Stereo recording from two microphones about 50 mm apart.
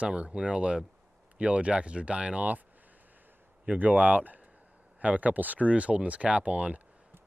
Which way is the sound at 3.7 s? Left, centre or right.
Right.